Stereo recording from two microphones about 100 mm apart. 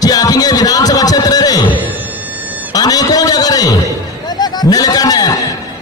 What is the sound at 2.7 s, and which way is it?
A man's voice, 40° left (ahead or behind).